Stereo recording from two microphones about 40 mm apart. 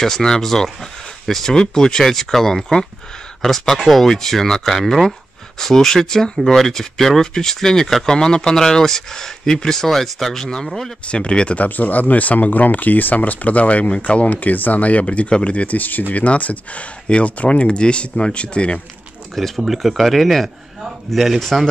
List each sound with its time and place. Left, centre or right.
0.0 s speech: centre
11.1 s speech: left
19.3 s speech: centre